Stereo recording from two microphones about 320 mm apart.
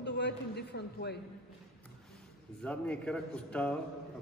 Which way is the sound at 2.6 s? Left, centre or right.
Centre.